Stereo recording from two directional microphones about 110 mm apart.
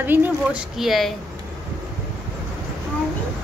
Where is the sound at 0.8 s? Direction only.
Centre (ahead or behind).